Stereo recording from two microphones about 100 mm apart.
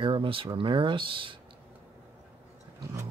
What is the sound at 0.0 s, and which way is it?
Speech, 60° right (ahead or behind).